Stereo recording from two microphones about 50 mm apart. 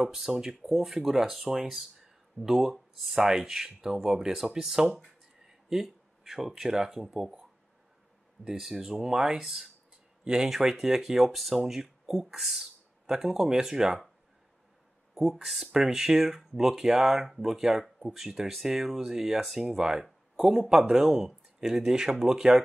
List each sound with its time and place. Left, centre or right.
0.0 s speech: centre
8.5 s speech: centre
15.1 s speech: centre